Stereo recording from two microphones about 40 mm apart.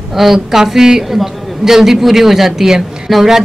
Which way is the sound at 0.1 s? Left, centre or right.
Centre.